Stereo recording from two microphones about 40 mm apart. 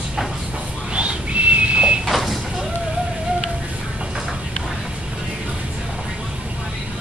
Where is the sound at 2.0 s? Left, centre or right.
Centre.